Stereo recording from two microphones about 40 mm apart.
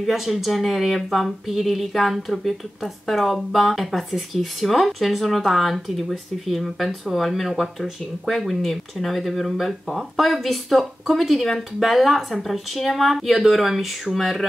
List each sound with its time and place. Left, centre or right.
0.0 s speech: centre